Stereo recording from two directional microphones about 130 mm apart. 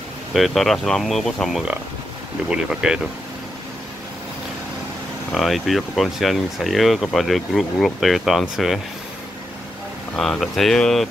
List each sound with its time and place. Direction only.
0.3 s speech: centre (ahead or behind)
5.3 s speech: centre (ahead or behind)
10.1 s speech: 5° left (ahead or behind)